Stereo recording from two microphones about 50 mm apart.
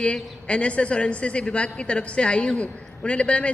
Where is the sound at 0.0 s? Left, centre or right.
Left.